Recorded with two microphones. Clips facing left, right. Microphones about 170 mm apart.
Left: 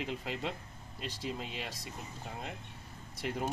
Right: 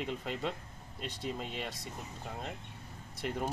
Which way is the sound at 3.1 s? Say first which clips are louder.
Even; 5° left (ahead or behind).